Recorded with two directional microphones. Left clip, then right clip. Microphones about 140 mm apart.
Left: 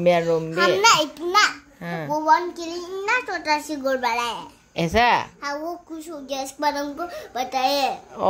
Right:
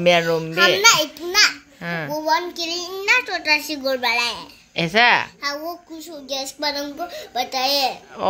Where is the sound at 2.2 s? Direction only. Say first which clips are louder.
Left 3 dB; 5° left (ahead or behind).